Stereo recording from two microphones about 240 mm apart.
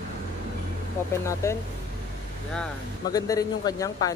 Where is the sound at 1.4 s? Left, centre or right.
Centre.